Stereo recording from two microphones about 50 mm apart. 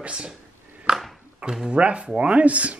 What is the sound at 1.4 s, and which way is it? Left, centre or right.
Speech, centre.